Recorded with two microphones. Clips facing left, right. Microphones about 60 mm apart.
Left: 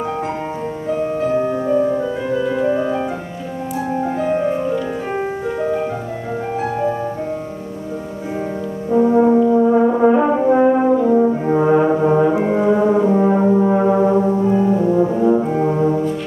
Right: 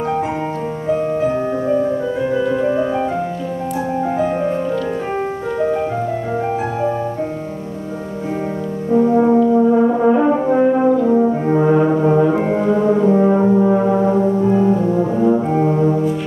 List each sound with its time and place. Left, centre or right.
0.8 s music: centre
8.9 s french horn: centre
9.7 s brass instrument: centre
12.4 s music: centre
13.1 s brass instrument: centre
14.4 s brass instrument: centre